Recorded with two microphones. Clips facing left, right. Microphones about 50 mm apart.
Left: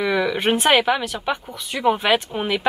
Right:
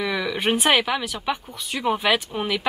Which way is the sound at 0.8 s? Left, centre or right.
Centre.